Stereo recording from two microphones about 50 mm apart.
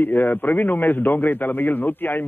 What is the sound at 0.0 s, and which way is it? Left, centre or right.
A man's voice, left.